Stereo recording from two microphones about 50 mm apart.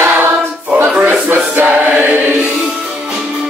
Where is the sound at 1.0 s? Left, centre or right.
Right.